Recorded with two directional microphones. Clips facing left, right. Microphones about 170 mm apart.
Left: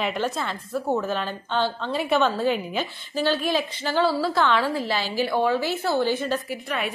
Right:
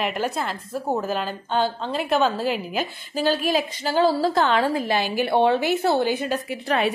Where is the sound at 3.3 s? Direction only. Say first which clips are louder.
Right 3 dB; 40° right (ahead or behind).